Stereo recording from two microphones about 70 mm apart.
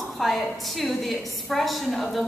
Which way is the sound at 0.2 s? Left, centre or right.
Centre.